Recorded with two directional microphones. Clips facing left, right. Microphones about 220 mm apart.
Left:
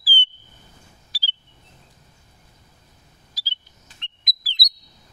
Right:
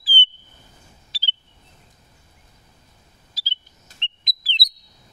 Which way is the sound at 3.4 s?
25° right (ahead or behind).